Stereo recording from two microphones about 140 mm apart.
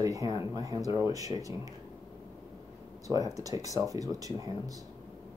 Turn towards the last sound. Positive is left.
turn(degrees=-25)  # may be behind; listen again after turning